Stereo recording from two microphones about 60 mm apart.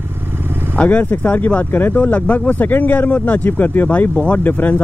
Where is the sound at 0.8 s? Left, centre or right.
Left.